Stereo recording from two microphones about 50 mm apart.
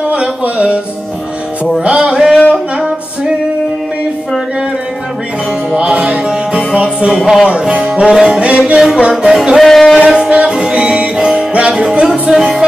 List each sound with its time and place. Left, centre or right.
0.1 s a sound: right
1.9 s music: right
5.8 s music: right
7.2 s music: centre
9.1 s music: centre
9.6 s a sound: centre
9.9 s music: centre